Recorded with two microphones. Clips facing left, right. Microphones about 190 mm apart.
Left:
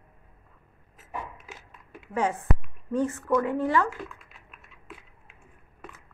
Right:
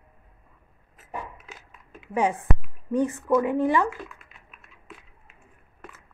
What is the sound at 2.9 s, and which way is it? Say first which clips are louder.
A woman's voice: right 3 dB; 15° right (ahead or behind).